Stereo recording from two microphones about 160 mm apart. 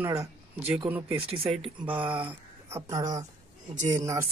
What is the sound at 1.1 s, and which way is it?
Speech, 35° right (ahead or behind).